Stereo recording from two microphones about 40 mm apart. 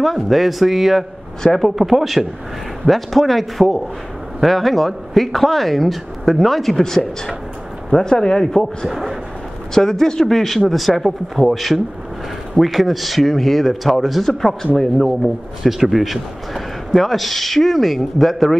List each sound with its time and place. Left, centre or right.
0.0 s a man's voice: centre
8.9 s a man's voice: centre
9.8 s a man's voice: centre
14.2 s a man's voice: centre